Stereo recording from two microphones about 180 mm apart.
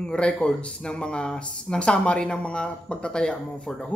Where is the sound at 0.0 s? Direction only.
5° left (ahead or behind).